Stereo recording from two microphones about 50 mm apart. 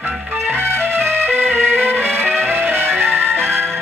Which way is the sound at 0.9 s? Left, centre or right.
Right.